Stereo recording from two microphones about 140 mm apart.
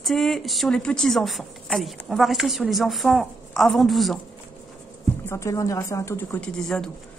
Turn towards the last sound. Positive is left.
turn(degrees=5)  # may be behind; listen again after turning